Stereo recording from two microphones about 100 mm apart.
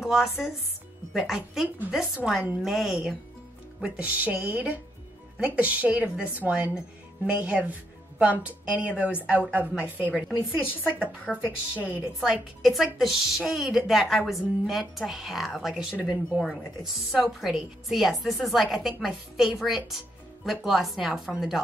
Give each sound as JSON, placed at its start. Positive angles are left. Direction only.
{"t": 0.0, "sound": "a woman's voice", "side_deg": -5}
{"t": 3.8, "sound": "a woman's voice", "side_deg": -10}
{"t": 10.6, "sound": "speech", "side_deg": 20}
{"t": 11.3, "sound": "a woman's voice", "side_deg": 5}
{"t": 11.8, "sound": "a woman's voice", "side_deg": -10}